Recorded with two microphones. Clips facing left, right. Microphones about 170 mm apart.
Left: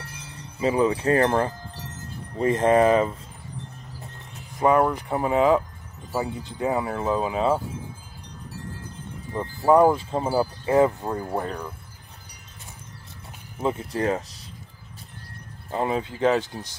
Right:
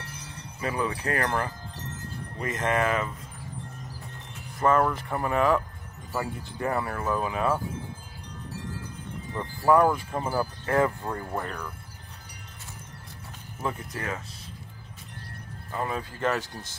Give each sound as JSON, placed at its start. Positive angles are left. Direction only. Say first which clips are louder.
{"t": 0.6, "sound": "speech", "louder": "left 8 dB", "side_deg": 25}
{"t": 4.6, "sound": "speech", "louder": "left 3 dB", "side_deg": 15}
{"t": 9.3, "sound": "speech", "louder": "left 3 dB", "side_deg": 20}
{"t": 13.9, "sound": "speech", "louder": "left 10 dB", "side_deg": 35}
{"t": 15.7, "sound": "speech", "louder": "left 6 dB", "side_deg": 25}